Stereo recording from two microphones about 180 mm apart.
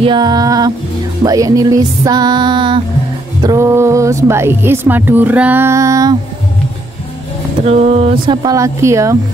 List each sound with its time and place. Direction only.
0.0 s speech: 25° right (ahead or behind)
7.6 s speech: 35° right (ahead or behind); by 9.2 s 15° right (ahead or behind)